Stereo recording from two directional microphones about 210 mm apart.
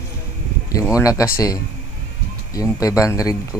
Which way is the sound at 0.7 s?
15° left (ahead or behind).